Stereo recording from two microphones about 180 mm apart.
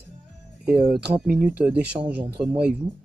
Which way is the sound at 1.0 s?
10° right (ahead or behind).